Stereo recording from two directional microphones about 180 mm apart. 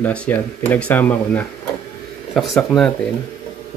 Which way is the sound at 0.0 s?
10° left (ahead or behind).